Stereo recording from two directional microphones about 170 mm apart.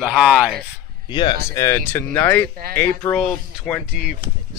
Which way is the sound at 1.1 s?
25° left (ahead or behind).